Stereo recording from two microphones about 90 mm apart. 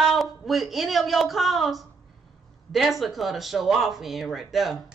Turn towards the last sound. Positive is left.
turn(degrees=0)  # may be behind; listen again after turning